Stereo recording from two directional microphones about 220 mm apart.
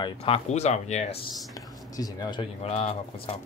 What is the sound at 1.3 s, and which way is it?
Speech, 15° left (ahead or behind).